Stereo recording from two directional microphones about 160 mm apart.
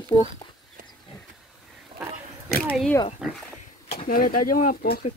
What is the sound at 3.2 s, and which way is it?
Speech, centre (ahead or behind).